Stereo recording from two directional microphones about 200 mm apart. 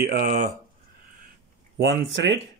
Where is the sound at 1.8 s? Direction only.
65° right (ahead or behind).